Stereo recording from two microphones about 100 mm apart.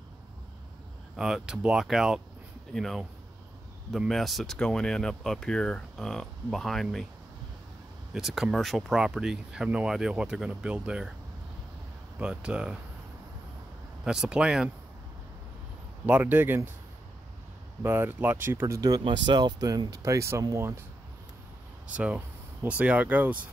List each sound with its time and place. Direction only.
1.1 s speech: 5° right (ahead or behind)
4.1 s speech: centre (ahead or behind)
8.1 s speech: 5° right (ahead or behind)
12.2 s speech: 10° right (ahead or behind)
14.0 s speech: 5° right (ahead or behind)
16.1 s speech: 20° right (ahead or behind)
17.8 s speech: 20° right (ahead or behind)
18.8 s speech: 40° right (ahead or behind); by 20.8 s 25° right (ahead or behind)
21.9 s speech: 10° right (ahead or behind)